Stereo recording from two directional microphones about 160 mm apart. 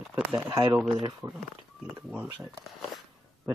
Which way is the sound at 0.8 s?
Centre (ahead or behind).